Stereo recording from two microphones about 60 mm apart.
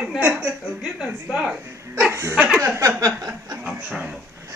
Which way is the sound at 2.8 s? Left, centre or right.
Right.